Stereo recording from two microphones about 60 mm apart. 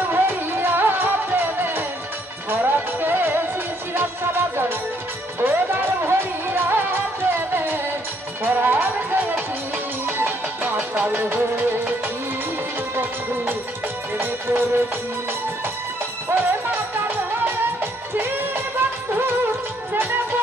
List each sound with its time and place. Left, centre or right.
0.1 s music: right
14.1 s music: right
16.3 s music: right